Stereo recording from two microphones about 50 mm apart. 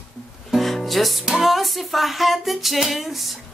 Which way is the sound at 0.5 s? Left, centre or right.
Centre.